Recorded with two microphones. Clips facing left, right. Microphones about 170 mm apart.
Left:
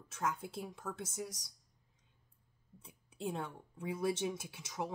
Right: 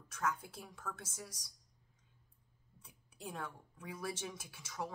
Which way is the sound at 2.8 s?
25° left (ahead or behind).